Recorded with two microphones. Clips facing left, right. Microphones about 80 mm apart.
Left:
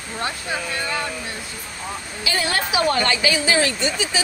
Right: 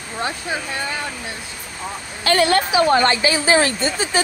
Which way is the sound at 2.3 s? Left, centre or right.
Right.